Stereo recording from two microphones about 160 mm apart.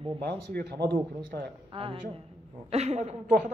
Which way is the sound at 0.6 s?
90° right.